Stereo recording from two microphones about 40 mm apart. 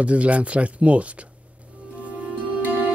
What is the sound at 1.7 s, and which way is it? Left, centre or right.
Music, right.